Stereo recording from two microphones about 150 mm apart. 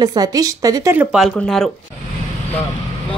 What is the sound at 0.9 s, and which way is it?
Speech, 5° right (ahead or behind).